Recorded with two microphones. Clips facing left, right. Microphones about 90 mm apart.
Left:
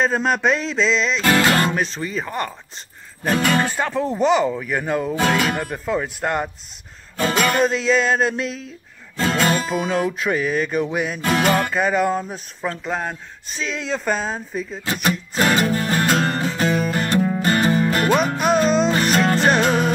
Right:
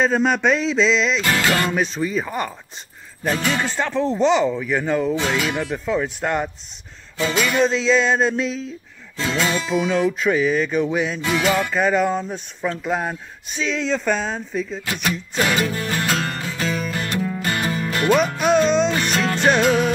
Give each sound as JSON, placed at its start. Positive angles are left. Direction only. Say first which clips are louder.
{"t": 0.0, "sound": "speech", "louder": "right 1 dB", "side_deg": 0}
{"t": 1.2, "sound": "music", "louder": "left 3 dB", "side_deg": 45}
{"t": 1.7, "sound": "speech", "louder": "right 2 dB", "side_deg": 0}
{"t": 3.3, "sound": "music", "louder": "left 3 dB", "side_deg": 50}
{"t": 3.7, "sound": "speech", "louder": "right 1 dB", "side_deg": 5}
{"t": 5.1, "sound": "music", "louder": "left 2 dB", "side_deg": 50}
{"t": 5.7, "sound": "speech", "louder": "right 1 dB", "side_deg": 5}
{"t": 7.2, "sound": "music", "louder": "left 1 dB", "side_deg": 50}
{"t": 7.6, "sound": "speech", "louder": "right 1 dB", "side_deg": 5}
{"t": 9.1, "sound": "music", "louder": "left 3 dB", "side_deg": 50}
{"t": 10.1, "sound": "speech", "louder": "right 2 dB", "side_deg": 5}
{"t": 11.1, "sound": "music", "louder": "left 4 dB", "side_deg": 50}
{"t": 11.7, "sound": "speech", "louder": "even", "side_deg": 5}
{"t": 15.0, "sound": "music", "louder": "left 2 dB", "side_deg": 40}